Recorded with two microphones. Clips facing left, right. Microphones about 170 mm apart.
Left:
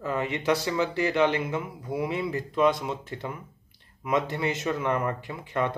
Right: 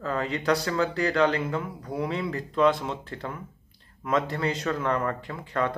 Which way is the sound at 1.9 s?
5° left (ahead or behind).